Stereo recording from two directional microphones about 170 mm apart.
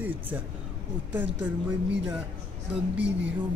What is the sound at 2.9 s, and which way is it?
Speech, 90° right.